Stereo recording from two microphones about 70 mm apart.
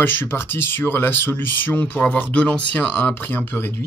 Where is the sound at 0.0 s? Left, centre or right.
Left.